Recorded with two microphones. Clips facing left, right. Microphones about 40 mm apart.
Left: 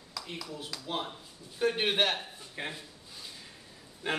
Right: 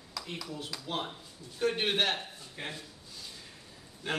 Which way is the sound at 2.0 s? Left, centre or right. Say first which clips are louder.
Left 1 dB; centre.